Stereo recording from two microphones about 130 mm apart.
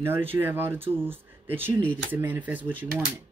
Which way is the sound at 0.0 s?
15° right (ahead or behind).